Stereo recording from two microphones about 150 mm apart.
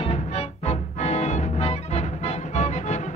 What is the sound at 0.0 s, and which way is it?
Music, 45° left (ahead or behind).